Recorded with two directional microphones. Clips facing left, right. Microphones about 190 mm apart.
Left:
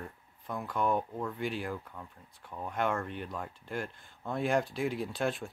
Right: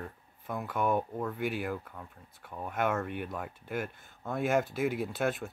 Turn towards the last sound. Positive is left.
turn(degrees=0)  # may be behind; listen again after turning